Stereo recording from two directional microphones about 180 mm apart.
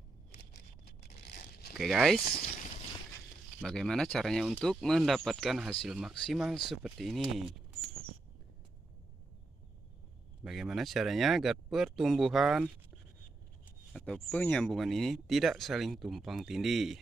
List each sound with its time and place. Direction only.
0.5 s a sound: 65° left (ahead or behind)
1.8 s speech: centre (ahead or behind)
3.6 s speech: 5° left (ahead or behind)
10.4 s speech: centre (ahead or behind)
13.9 s speech: 5° left (ahead or behind)